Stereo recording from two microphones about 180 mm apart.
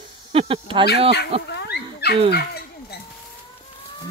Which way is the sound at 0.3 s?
30° right (ahead or behind).